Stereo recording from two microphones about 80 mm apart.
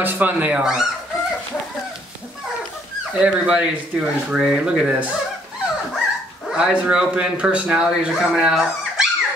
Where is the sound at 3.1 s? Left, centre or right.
Centre.